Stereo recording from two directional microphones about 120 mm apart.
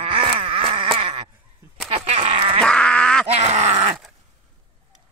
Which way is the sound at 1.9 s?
70° right (ahead or behind).